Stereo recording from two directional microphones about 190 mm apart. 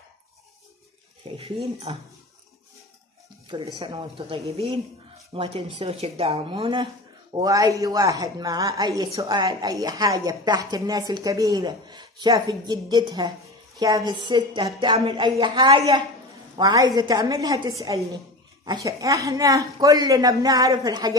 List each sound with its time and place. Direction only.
1.3 s speech: 30° right (ahead or behind)
3.4 s speech: 25° right (ahead or behind)